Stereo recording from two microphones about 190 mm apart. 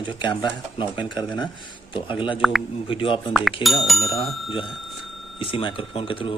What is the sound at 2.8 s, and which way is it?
Speech, 30° left (ahead or behind).